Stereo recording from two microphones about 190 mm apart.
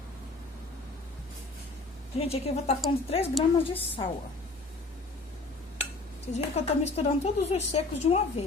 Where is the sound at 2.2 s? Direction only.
35° left (ahead or behind).